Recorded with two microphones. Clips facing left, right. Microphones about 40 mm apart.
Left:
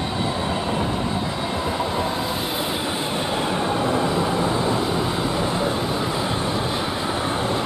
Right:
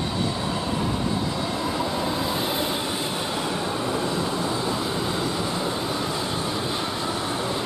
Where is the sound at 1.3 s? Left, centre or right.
Left.